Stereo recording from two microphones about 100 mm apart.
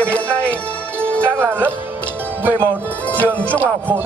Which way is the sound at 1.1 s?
20° right (ahead or behind).